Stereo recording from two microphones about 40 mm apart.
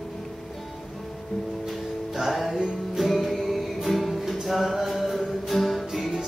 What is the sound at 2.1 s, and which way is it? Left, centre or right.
Music, centre.